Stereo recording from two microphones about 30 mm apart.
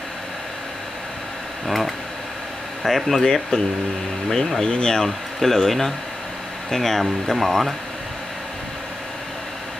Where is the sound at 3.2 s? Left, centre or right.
Centre.